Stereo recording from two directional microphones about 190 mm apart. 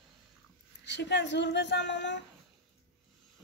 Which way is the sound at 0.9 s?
65° left (ahead or behind).